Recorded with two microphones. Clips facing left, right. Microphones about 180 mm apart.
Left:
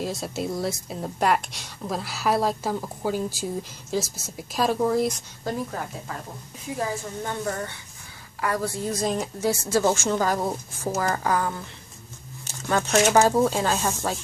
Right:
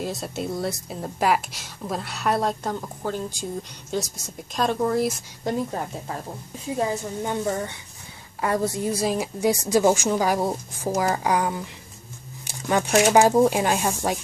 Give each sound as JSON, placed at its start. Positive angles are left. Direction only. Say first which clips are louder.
{"t": 0.0, "sound": "speech", "louder": "even", "side_deg": 0}
{"t": 5.4, "sound": "a woman's voice", "louder": "right 3 dB", "side_deg": -25}